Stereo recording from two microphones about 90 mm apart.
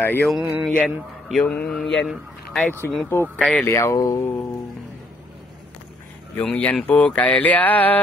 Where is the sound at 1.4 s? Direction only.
15° left (ahead or behind).